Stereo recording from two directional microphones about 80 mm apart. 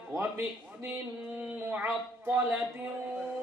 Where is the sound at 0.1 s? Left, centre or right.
Right.